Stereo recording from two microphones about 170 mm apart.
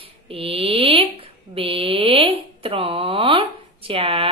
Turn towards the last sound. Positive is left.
turn(degrees=-35)  # may be behind; listen again after turning